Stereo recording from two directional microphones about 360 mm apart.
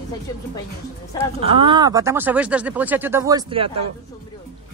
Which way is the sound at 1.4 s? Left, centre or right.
Centre.